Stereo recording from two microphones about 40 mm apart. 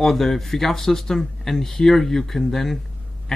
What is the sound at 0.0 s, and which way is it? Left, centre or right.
Speech, centre.